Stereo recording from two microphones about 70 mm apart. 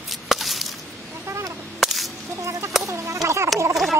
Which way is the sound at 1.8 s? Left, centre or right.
Centre.